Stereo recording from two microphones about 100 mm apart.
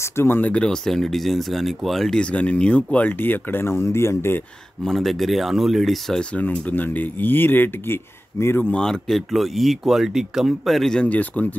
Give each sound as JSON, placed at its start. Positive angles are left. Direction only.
{"t": 0.0, "sound": "speech", "side_deg": 25}
{"t": 4.8, "sound": "speech", "side_deg": 0}
{"t": 6.3, "sound": "speech", "side_deg": 15}
{"t": 8.7, "sound": "speech", "side_deg": 5}